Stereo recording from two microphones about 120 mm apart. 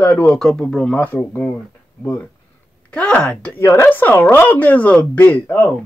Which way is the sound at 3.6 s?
20° left (ahead or behind).